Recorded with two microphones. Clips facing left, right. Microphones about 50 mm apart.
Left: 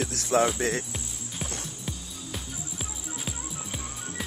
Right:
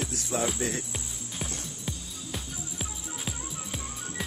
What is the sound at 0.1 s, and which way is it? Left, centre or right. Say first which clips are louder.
Cricket: left 6 dB; left.